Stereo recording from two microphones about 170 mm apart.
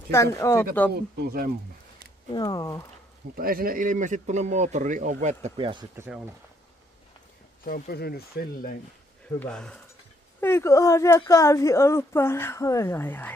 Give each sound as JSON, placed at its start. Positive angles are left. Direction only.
{"t": 0.1, "sound": "a woman's voice", "side_deg": 15}
{"t": 0.9, "sound": "speech", "side_deg": -70}
{"t": 2.3, "sound": "speech", "side_deg": 25}
{"t": 3.3, "sound": "speech", "side_deg": -60}
{"t": 5.4, "sound": "speech", "side_deg": -30}
{"t": 7.6, "sound": "speech", "side_deg": 60}
{"t": 9.4, "sound": "speech", "side_deg": 5}
{"t": 10.4, "sound": "a woman's voice", "side_deg": 15}